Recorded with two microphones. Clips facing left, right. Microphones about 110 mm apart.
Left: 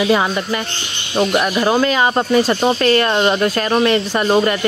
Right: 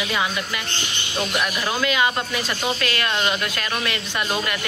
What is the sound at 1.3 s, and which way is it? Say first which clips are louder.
Speech: left 9 dB; 45° left (ahead or behind).